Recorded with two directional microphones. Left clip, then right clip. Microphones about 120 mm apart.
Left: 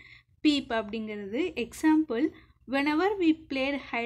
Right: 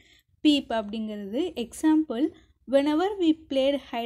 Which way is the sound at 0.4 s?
50° right (ahead or behind).